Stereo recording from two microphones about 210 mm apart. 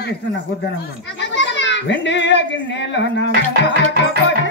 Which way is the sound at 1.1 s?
60° left (ahead or behind).